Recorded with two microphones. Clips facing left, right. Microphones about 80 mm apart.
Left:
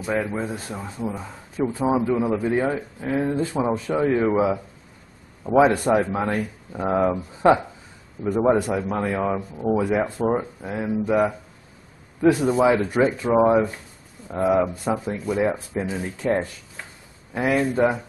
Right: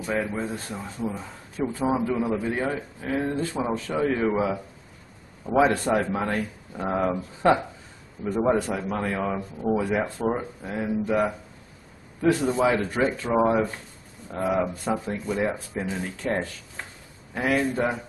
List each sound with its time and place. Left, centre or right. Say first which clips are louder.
0.4 s speech: left 2 dB; centre
5.4 s speech: left 4 dB; centre
6.2 s speech: left 2 dB; centre
8.3 s speech: left 4 dB; centre